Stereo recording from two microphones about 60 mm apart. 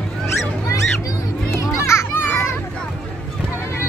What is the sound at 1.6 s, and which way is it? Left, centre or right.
Children playing, left.